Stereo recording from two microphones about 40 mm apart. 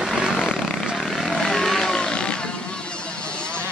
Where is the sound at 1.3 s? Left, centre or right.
Centre.